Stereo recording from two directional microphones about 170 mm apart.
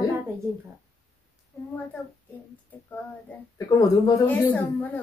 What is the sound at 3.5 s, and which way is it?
Speech, 20° left (ahead or behind).